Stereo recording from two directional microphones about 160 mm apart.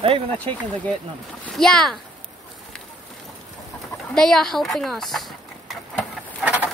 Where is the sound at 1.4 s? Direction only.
5° left (ahead or behind).